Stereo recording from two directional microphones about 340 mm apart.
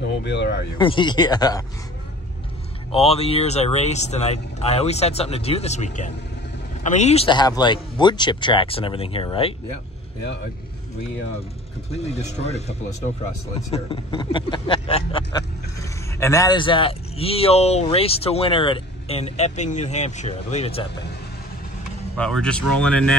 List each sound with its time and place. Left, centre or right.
0.0 s speech: left
0.7 s speech: centre
2.9 s speech: centre
11.9 s speech: centre
22.1 s speech: centre